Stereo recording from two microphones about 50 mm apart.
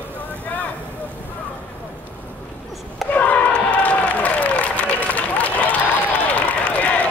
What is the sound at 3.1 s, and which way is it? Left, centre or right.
Applause, left.